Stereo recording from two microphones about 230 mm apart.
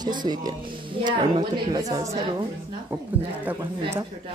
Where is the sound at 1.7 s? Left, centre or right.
Centre.